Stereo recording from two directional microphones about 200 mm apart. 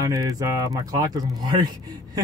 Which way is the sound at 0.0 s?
20° right (ahead or behind).